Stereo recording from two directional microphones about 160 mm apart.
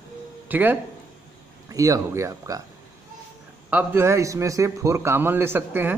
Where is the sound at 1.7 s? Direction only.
20° right (ahead or behind).